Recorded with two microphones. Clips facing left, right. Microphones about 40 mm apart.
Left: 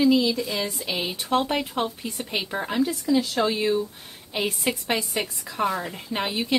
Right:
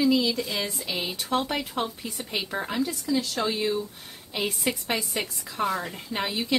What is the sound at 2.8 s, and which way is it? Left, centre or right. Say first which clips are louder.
Speech: left 6 dB; left.